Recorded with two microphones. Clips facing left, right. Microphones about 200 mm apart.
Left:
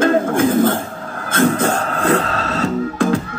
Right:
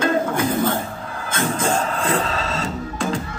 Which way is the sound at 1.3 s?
60° left (ahead or behind).